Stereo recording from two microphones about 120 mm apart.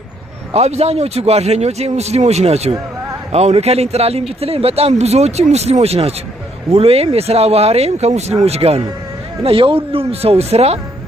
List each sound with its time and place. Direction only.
0.5 s speech: 65° right (ahead or behind)